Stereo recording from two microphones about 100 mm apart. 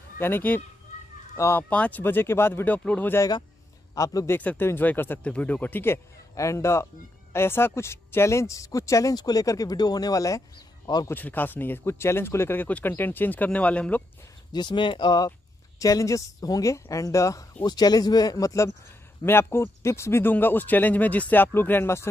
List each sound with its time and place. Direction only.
0.2 s speech: 20° left (ahead or behind)
1.6 s speech: 15° left (ahead or behind)
3.2 s a man's voice: 40° left (ahead or behind)
4.3 s speech: 20° left (ahead or behind); by 10.4 s 35° left (ahead or behind)
11.1 s speech: 20° left (ahead or behind)
14.5 s speech: 50° left (ahead or behind)
15.8 s speech: 35° left (ahead or behind)
17.6 s speech: 45° left (ahead or behind); by 22.1 s 25° left (ahead or behind)